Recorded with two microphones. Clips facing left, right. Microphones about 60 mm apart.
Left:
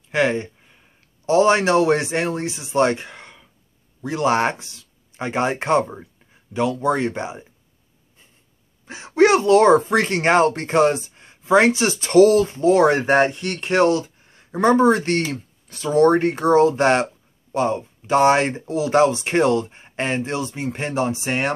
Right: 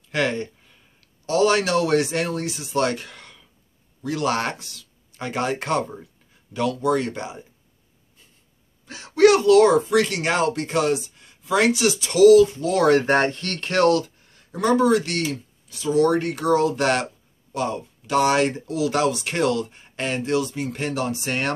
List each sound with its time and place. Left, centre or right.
0.1 s a sound: left
1.2 s speech: left
8.8 s speech: left